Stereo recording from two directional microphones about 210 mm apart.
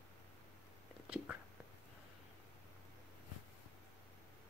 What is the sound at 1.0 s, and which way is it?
Whispering, 5° right (ahead or behind).